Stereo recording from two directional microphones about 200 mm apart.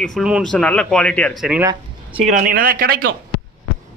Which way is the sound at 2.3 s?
40° right (ahead or behind).